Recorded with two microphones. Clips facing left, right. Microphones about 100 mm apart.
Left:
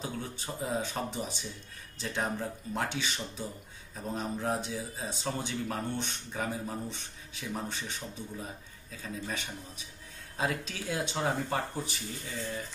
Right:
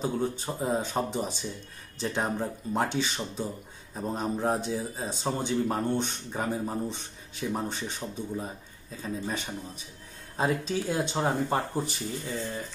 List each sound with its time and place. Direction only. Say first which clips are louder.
0.0 s speech: right 9 dB; 35° right (ahead or behind)